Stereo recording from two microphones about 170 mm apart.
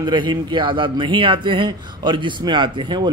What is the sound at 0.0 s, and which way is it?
A man's voice, 25° right (ahead or behind).